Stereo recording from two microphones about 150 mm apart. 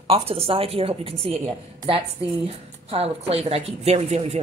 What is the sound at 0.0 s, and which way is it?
A woman's voice, 40° right (ahead or behind).